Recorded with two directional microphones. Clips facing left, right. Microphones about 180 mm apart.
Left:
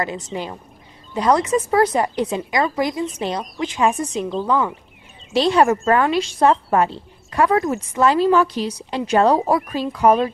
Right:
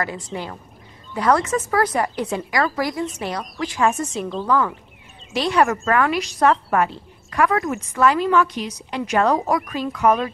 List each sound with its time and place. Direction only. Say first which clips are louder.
0.0 s a woman's voice: left 2 dB; 20° left (ahead or behind)
4.2 s speech: left 3 dB; centre (ahead or behind)
4.5 s speech: right 1 dB; 15° left (ahead or behind)
5.3 s a woman's voice: left 3 dB; 30° left (ahead or behind)